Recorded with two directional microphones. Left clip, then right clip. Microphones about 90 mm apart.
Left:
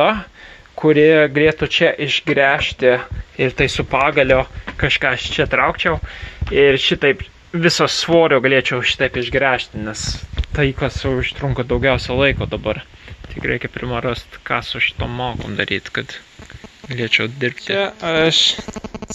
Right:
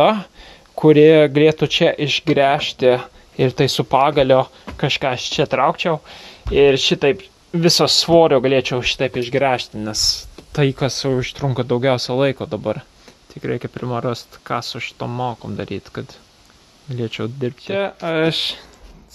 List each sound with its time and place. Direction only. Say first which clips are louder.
0.0 s speech: right 1 dB; 80° right; by 3.1 s 55° right (ahead or behind)
3.3 s speech: even; 85° right
3.9 s speech: right 1 dB; 50° right (ahead or behind); by 10.2 s 70° right (ahead or behind)
10.5 s speech: even; 50° right (ahead or behind)
13.4 s speech: left 3 dB; 20° right (ahead or behind)
14.6 s speech: left 7 dB; 35° right (ahead or behind)
15.0 s speech: even; 20° right (ahead or behind)
15.5 s speech: left 8 dB; 10° right (ahead or behind)
16.9 s speech: left 8 dB; 35° right (ahead or behind)
17.7 s speech: left 2 dB; centre (ahead or behind)